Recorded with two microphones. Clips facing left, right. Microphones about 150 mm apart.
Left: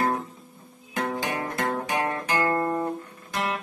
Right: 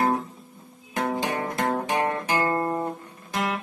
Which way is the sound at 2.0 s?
15° right (ahead or behind).